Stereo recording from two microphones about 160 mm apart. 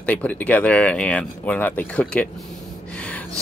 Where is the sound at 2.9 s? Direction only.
10° left (ahead or behind).